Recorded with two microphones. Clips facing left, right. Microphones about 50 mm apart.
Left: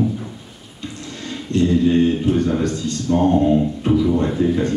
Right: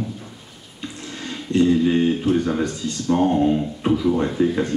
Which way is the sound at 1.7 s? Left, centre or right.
Centre.